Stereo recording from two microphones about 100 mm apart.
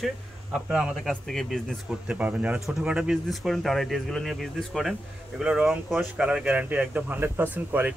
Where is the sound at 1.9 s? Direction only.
15° right (ahead or behind).